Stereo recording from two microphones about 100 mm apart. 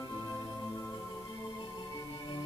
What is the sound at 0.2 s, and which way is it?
Organ, 30° left (ahead or behind).